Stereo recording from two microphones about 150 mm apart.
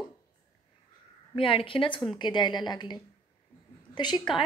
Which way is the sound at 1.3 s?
35° left (ahead or behind).